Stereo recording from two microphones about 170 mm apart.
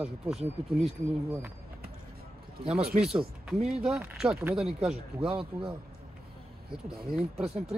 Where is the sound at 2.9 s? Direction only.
40° right (ahead or behind).